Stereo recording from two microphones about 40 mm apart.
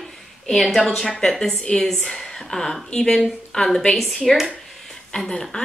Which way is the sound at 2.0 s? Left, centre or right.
Centre.